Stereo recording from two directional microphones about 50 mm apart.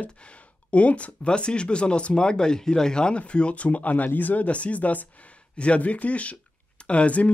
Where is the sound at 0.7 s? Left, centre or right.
Left.